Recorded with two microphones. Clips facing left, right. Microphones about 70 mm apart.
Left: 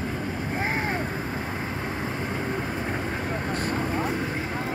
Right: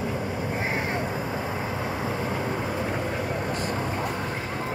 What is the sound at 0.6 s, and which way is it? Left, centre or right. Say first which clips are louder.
Vehicle: left 2 dB; left.